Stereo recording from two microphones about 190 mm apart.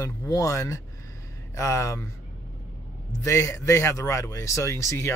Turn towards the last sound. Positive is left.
turn(degrees=15)  # may be behind; listen again after turning